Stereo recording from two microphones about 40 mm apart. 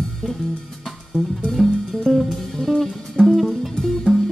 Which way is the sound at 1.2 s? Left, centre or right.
Centre.